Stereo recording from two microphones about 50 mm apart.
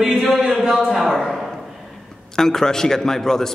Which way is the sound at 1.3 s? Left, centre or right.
Centre.